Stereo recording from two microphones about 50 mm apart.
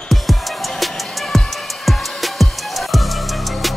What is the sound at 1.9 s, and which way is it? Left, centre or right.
Music, centre.